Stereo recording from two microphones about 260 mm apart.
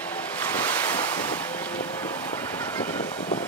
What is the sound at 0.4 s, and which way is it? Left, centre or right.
Waves, centre.